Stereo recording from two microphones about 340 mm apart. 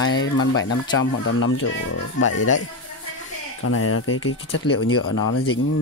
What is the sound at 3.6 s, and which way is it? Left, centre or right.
Speech, left.